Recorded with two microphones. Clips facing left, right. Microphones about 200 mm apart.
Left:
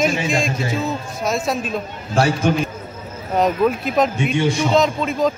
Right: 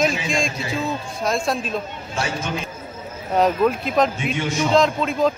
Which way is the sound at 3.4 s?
Centre (ahead or behind).